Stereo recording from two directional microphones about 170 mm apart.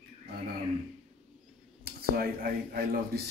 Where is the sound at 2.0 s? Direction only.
65° right (ahead or behind).